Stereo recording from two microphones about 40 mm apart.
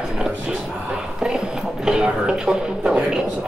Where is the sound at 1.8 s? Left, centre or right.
Centre.